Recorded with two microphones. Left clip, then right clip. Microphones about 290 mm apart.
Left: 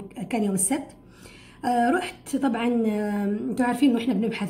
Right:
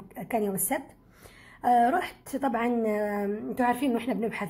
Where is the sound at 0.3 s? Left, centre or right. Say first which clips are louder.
Left 2 dB; right.